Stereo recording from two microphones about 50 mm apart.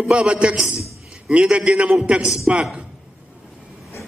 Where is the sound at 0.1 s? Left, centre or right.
Right.